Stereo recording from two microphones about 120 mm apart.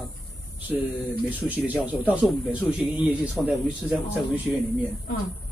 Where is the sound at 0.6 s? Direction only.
15° right (ahead or behind).